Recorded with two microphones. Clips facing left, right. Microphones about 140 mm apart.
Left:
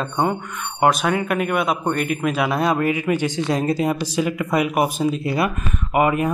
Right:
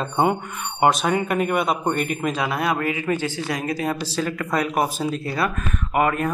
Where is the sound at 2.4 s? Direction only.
20° left (ahead or behind).